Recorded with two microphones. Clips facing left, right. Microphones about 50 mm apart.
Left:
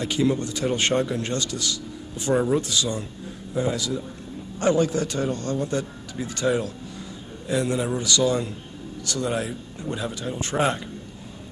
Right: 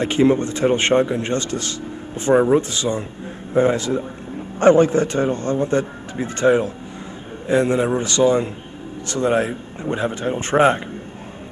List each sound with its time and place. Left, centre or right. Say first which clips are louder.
0.0 s a man's voice: right 7 dB; right